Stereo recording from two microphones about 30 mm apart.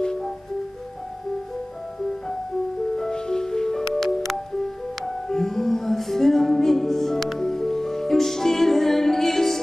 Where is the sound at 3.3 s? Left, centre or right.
Left.